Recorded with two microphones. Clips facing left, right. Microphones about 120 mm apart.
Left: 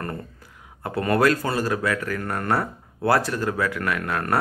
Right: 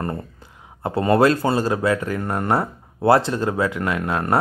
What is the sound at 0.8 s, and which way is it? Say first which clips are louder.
Speech: right 4 dB; 25° right (ahead or behind).